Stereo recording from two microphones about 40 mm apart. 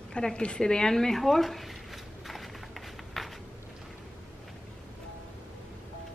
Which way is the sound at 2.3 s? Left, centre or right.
Centre.